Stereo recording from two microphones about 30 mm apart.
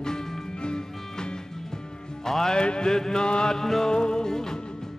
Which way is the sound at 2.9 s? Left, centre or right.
Left.